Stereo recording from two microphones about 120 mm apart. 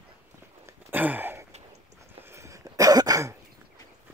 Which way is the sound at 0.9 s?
15° right (ahead or behind).